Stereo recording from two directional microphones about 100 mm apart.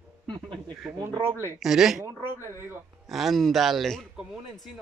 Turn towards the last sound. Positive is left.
turn(degrees=0)  # may be behind; listen again after turning